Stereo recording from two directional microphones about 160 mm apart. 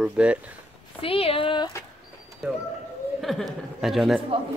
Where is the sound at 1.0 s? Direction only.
35° left (ahead or behind).